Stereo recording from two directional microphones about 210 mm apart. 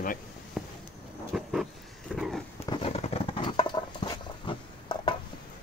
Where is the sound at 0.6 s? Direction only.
Centre (ahead or behind).